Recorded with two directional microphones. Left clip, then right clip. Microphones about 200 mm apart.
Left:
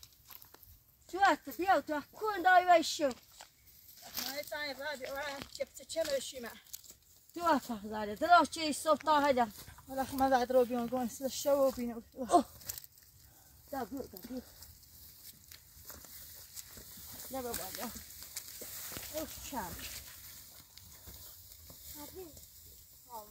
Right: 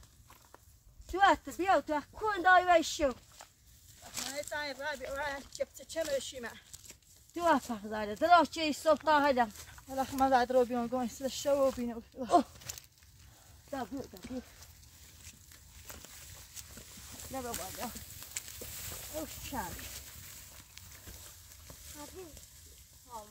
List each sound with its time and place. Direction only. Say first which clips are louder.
1.1 s speech: right 2 dB; 15° left (ahead or behind)
4.2 s speech: right 2 dB; 5° right (ahead or behind)
7.3 s speech: right 2 dB; 30° left (ahead or behind)
9.6 s speech: right 2 dB; 5° right (ahead or behind)
12.3 s speech: right 1 dB; 10° left (ahead or behind)
13.7 s speech: right 1 dB; centre (ahead or behind)
17.3 s speech: even; 5° left (ahead or behind)
18.6 s a sound: right 2 dB; 25° right (ahead or behind)
19.1 s speech: right 1 dB; 15° right (ahead or behind)